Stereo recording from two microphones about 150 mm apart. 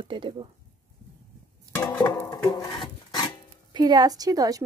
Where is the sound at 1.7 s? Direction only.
10° left (ahead or behind).